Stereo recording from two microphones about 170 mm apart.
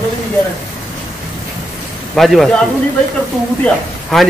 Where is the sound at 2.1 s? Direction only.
Centre (ahead or behind).